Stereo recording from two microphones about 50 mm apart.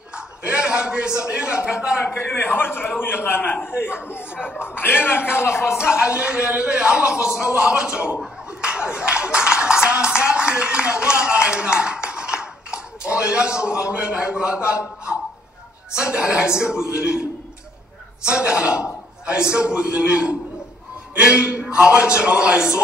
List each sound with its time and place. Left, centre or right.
0.1 s a man's voice: right
2.1 s a man's voice: left
4.2 s speech: right
4.6 s a man's voice: left
5.3 s speech: left
5.9 s speech: right
8.6 s music: right
13.9 s speech: right
16.7 s a man's voice: left
17.0 s a man's voice: centre